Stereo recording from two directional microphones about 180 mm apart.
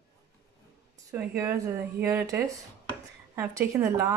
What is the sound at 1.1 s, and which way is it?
Speech, 10° right (ahead or behind).